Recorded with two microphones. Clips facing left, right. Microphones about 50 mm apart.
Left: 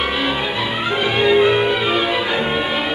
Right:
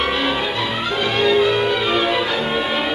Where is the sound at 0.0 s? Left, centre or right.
Centre.